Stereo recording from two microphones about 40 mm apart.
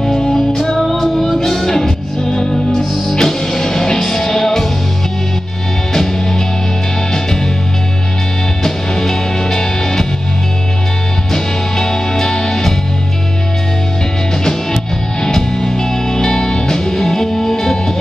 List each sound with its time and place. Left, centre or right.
0.0 s music: centre
8.6 s music: centre
11.3 s music: centre
15.2 s music: centre